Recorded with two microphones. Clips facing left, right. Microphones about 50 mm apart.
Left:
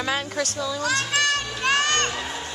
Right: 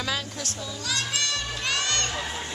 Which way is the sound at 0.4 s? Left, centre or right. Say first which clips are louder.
Left 9 dB; left.